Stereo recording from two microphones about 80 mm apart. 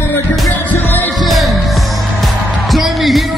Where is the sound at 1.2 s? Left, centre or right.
Centre.